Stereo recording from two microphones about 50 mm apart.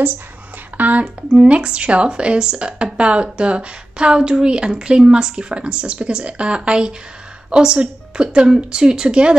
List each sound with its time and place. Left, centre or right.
0.7 s speech: right
1.0 s a woman's voice: centre